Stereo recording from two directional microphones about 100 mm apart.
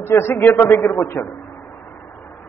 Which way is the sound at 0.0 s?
25° left (ahead or behind).